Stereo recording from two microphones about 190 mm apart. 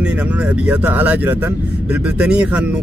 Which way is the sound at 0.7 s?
10° right (ahead or behind).